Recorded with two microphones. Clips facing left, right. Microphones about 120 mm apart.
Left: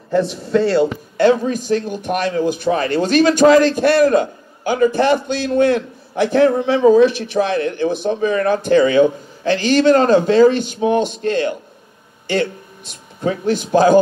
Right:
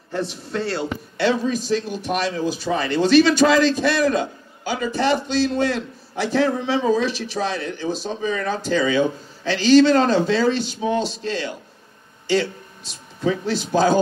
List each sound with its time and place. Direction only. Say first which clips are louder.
0.3 s speech: left 10 dB; 50° left (ahead or behind)